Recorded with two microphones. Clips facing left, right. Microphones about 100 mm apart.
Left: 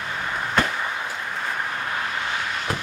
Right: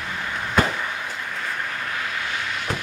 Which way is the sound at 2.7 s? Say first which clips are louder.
Even; 5° left (ahead or behind).